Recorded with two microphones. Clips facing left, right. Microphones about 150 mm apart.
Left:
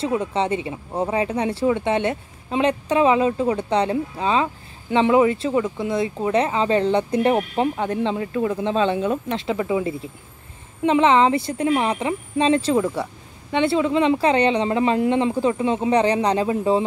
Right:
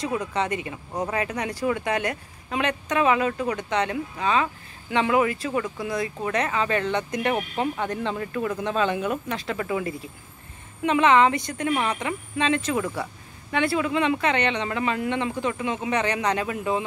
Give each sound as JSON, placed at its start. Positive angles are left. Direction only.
{"t": 0.0, "sound": "speech", "side_deg": 30}